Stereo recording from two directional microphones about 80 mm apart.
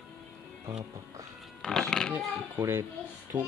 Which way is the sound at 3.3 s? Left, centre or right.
Centre.